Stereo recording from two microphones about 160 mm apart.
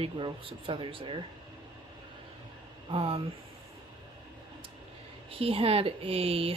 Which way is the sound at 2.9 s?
40° right (ahead or behind).